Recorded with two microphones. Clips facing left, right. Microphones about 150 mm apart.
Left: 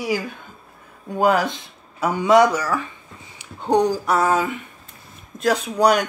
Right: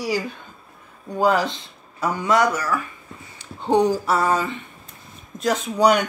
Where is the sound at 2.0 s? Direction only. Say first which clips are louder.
Left 4 dB; 15° left (ahead or behind).